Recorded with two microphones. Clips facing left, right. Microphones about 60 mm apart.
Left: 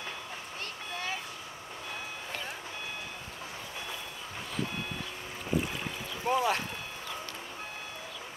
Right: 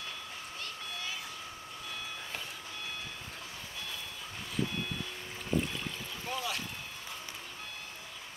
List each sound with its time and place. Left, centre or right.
6.2 s boat: left